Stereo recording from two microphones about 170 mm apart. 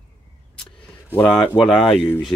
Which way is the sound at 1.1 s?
10° left (ahead or behind).